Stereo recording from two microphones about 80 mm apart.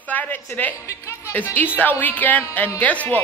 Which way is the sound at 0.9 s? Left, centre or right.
Left.